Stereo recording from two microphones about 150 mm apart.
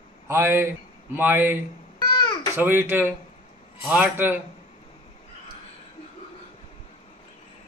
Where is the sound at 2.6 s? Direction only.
15° right (ahead or behind).